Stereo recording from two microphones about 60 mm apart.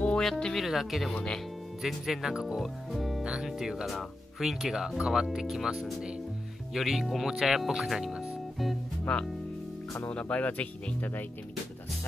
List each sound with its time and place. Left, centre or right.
0.2 s speech: centre
1.1 s speech: centre
1.8 s speech: centre
9.0 s speech: centre
10.3 s speech: left